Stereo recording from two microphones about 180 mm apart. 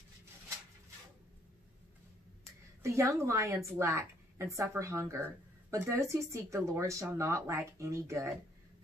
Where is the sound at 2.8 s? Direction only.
15° right (ahead or behind).